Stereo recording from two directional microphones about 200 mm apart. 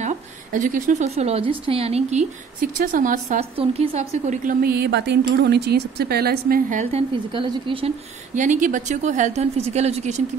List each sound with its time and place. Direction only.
0.0 s a woman's voice: 40° right (ahead or behind)
3.5 s a woman's voice: 30° right (ahead or behind)
8.4 s speech: 40° right (ahead or behind)